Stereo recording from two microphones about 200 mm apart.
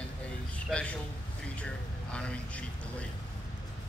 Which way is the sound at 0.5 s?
5° left (ahead or behind).